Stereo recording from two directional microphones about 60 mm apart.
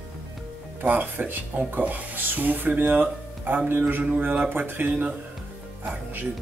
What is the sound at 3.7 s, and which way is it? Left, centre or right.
Music, right.